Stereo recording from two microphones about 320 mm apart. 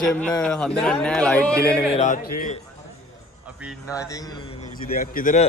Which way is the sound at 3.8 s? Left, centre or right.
Centre.